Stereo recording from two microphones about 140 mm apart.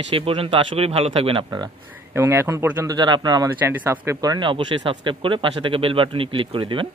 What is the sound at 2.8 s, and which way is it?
Speech, 30° right (ahead or behind).